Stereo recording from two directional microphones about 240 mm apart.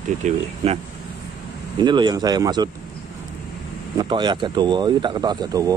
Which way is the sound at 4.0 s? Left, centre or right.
Centre.